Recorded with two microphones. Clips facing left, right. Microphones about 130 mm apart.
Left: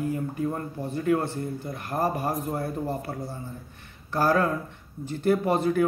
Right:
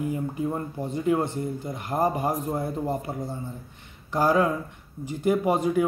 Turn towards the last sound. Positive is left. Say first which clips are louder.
# right 1 dB
turn(degrees=-15)  # may be behind; listen again after turning